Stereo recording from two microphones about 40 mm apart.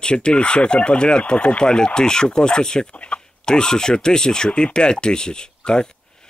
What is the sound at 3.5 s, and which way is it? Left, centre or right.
Speech, centre.